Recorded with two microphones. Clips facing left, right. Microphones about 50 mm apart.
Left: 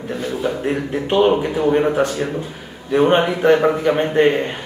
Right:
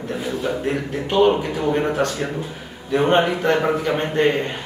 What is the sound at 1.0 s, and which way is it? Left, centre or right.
A man's voice, centre.